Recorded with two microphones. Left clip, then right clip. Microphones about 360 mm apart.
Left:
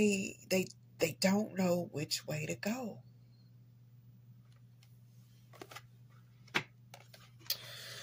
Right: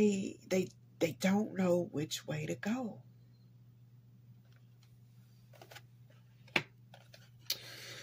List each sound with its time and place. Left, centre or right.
0.0 s a woman's voice: left